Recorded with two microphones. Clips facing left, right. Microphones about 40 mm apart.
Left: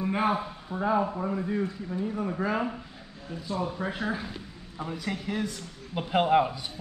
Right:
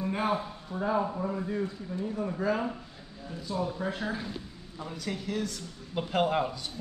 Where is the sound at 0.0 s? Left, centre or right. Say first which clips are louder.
Left 3 dB; centre.